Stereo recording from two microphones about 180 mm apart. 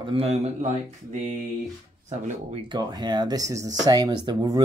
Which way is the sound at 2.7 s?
25° right (ahead or behind).